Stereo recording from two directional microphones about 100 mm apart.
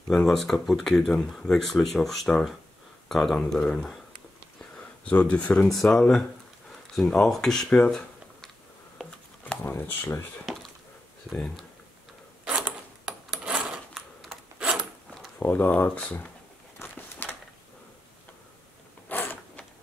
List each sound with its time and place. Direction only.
0.1 s speech: centre (ahead or behind)
9.0 s a sound: 10° right (ahead or behind)
9.5 s speech: 20° left (ahead or behind)
11.3 s speech: 10° left (ahead or behind)
12.4 s coin: 10° right (ahead or behind)
15.0 s a sound: centre (ahead or behind)
15.4 s speech: 20° left (ahead or behind)
16.7 s a sound: 20° left (ahead or behind)
19.0 s mechanisms: 20° left (ahead or behind)